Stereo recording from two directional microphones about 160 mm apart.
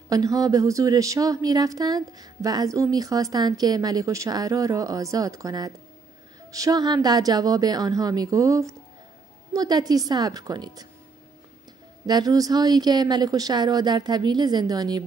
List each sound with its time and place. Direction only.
0.1 s a woman's voice: 20° right (ahead or behind)
12.1 s a woman's voice: 25° right (ahead or behind)